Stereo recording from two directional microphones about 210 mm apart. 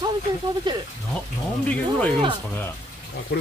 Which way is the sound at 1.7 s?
5° left (ahead or behind).